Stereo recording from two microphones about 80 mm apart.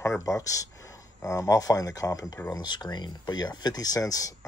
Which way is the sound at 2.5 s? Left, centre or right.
Left.